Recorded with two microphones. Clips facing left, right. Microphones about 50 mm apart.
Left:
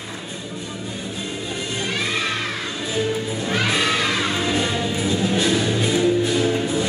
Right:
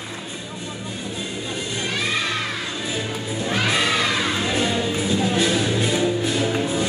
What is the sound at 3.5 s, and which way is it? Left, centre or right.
Music, centre.